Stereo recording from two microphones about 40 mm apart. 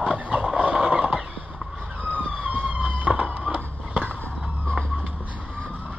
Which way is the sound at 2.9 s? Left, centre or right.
Right.